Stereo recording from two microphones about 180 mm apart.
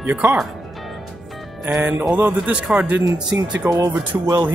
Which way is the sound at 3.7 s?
20° right (ahead or behind).